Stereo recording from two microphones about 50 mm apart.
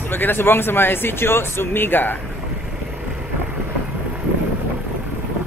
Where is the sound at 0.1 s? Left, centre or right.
Left.